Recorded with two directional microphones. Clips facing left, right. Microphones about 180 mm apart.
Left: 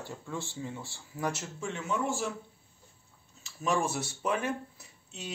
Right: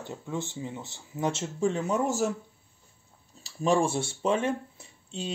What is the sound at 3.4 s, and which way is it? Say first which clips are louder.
Speech: right 6 dB; 30° right (ahead or behind).